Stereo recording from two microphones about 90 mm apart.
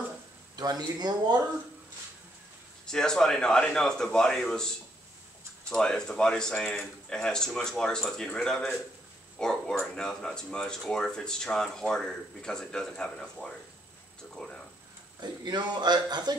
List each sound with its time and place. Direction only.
0.6 s a man's voice: 50° right (ahead or behind)
2.9 s speech: 5° left (ahead or behind)
15.4 s a man's voice: 50° right (ahead or behind)